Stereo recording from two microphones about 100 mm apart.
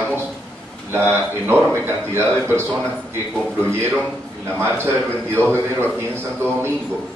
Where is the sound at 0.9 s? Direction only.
25° right (ahead or behind).